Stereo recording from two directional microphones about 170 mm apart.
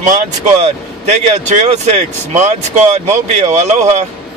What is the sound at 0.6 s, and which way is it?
Speech, 45° right (ahead or behind).